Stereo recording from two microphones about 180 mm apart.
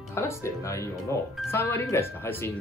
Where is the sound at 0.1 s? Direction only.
15° left (ahead or behind).